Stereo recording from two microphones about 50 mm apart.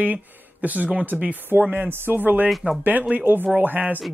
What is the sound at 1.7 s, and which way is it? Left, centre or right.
Speech, right.